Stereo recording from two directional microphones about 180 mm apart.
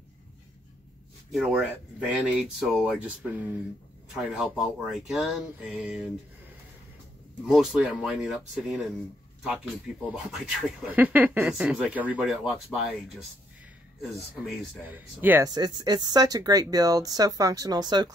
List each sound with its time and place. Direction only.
1.3 s speech: 5° right (ahead or behind)
7.4 s speech: centre (ahead or behind)
9.9 s speech: 5° right (ahead or behind)
14.4 s speech: 10° right (ahead or behind)
15.8 s speech: 25° right (ahead or behind)